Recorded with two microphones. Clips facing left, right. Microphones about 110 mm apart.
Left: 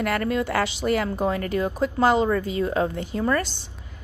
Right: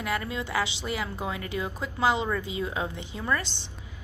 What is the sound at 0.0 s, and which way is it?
A woman's voice, 60° left (ahead or behind).